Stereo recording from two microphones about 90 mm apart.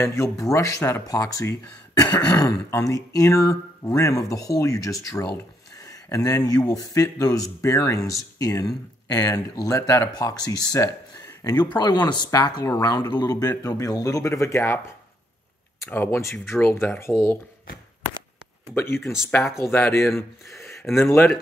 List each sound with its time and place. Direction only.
0.0 s a man's voice: 35° left (ahead or behind)
11.7 s a man's voice: 50° left (ahead or behind); by 14.8 s 30° left (ahead or behind)
15.8 s speech: 25° left (ahead or behind)
18.8 s speech: 25° left (ahead or behind)